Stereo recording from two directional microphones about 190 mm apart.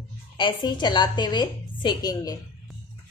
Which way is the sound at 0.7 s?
25° left (ahead or behind).